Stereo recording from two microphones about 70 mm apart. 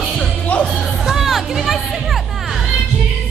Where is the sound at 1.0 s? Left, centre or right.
Centre.